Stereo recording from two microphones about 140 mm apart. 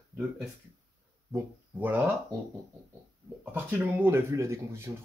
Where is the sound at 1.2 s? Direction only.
15° right (ahead or behind).